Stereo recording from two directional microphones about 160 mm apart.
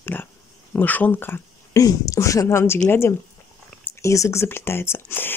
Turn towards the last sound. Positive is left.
turn(degrees=15)  # may be behind; listen again after turning